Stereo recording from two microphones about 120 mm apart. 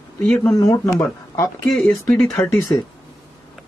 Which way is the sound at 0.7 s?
30° left (ahead or behind).